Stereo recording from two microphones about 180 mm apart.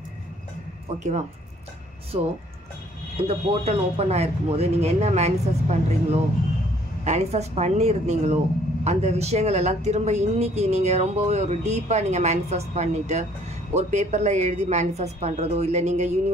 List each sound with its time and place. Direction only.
0.9 s speech: 40° right (ahead or behind)